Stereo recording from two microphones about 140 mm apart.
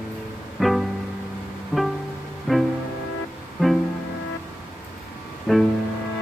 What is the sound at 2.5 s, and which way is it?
Music, 5° left (ahead or behind).